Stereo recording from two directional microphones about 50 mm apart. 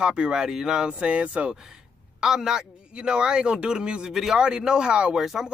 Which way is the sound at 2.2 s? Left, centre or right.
Centre.